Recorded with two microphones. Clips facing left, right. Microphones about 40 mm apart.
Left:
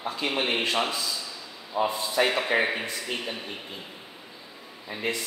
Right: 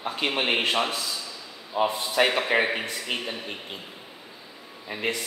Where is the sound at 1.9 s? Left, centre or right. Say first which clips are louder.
Right 1 dB; right.